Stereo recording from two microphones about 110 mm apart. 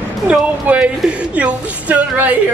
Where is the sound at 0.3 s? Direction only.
10° right (ahead or behind).